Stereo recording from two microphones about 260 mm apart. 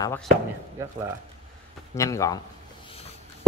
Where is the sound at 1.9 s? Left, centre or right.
Centre.